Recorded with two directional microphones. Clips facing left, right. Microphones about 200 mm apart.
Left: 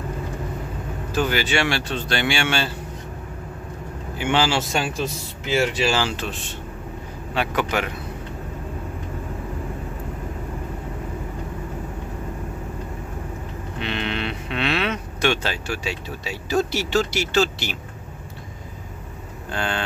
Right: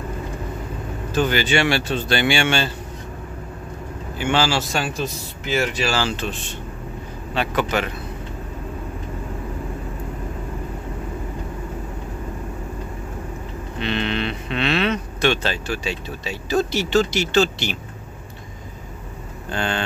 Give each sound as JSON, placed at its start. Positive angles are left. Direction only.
{"t": 1.1, "sound": "speech", "side_deg": 5}
{"t": 4.2, "sound": "a man's voice", "side_deg": 15}
{"t": 13.7, "sound": "speech", "side_deg": 10}
{"t": 19.5, "sound": "speech", "side_deg": 5}